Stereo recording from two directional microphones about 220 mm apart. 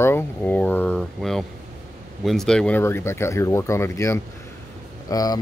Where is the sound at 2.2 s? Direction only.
Centre (ahead or behind).